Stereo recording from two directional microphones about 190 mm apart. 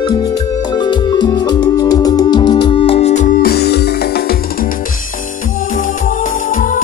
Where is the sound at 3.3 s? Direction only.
55° left (ahead or behind).